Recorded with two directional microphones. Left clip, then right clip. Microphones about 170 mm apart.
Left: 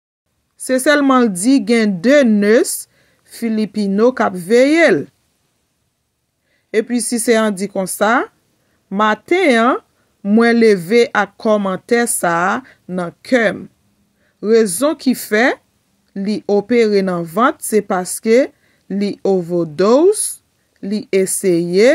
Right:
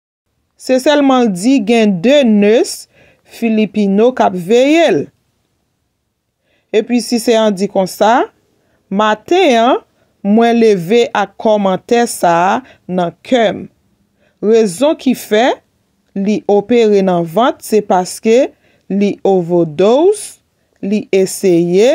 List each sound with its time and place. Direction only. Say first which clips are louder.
0.6 s speech: right 3 dB; 15° right (ahead or behind)
6.7 s speech: right 4 dB; 15° right (ahead or behind)